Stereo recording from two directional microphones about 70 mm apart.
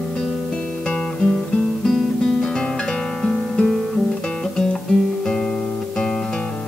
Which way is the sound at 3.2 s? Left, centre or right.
Centre.